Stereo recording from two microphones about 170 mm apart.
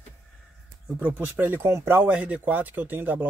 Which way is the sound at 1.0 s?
10° right (ahead or behind).